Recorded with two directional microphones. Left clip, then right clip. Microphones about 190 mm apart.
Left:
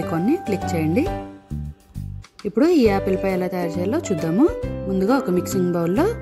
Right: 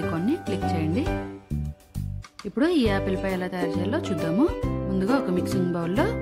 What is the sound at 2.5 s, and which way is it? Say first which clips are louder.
Speech: left 6 dB; 15° left (ahead or behind).